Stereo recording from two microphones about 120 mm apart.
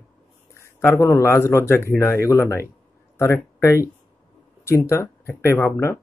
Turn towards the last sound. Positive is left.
turn(degrees=20)  # may be behind; listen again after turning